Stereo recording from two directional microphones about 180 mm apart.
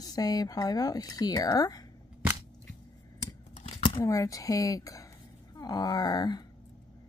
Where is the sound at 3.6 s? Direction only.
35° left (ahead or behind).